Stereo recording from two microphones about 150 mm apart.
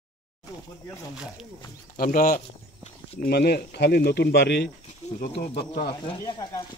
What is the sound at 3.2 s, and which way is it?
Speech, 90° left.